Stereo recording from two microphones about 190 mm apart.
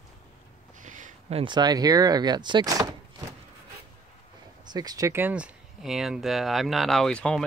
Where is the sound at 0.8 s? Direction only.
40° right (ahead or behind); by 2.9 s 20° right (ahead or behind).